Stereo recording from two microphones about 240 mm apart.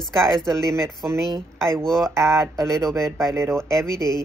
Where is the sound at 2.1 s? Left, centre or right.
Centre.